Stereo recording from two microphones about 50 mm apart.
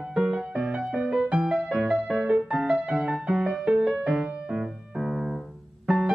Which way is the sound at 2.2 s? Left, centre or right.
Right.